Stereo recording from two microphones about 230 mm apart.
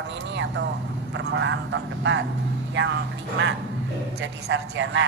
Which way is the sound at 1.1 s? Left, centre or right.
Right.